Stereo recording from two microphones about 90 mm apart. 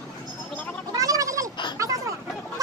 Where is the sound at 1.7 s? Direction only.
40° right (ahead or behind).